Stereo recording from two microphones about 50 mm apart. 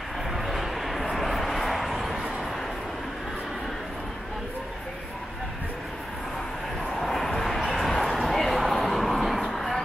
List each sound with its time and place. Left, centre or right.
0.3 s vehicle: centre
7.0 s vehicle: centre
8.2 s a sound: centre